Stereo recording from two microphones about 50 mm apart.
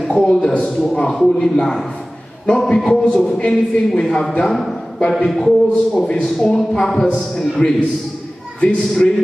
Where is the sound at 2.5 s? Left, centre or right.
Centre; by 7.8 s left.